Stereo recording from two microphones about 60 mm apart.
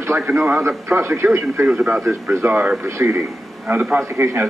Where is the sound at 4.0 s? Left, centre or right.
Right.